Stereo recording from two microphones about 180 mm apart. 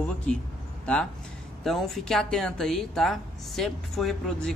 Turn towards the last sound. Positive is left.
turn(degrees=5)  # may be behind; listen again after turning